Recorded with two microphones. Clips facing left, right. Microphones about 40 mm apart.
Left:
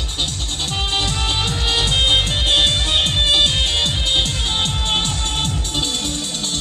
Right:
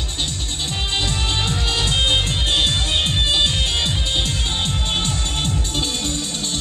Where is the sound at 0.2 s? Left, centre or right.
Left.